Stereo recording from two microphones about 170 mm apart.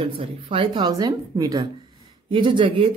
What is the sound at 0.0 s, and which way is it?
A woman's voice, 30° right (ahead or behind).